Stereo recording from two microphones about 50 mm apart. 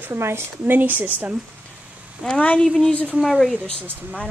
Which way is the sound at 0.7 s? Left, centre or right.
Right.